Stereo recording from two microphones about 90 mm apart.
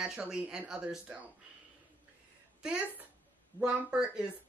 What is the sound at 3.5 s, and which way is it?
Speech, 10° right (ahead or behind).